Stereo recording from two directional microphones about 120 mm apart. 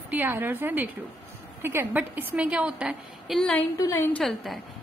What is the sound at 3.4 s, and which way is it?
Speech, 10° left (ahead or behind).